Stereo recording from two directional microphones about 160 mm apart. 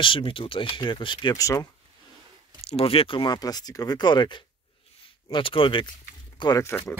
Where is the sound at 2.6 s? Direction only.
40° left (ahead or behind).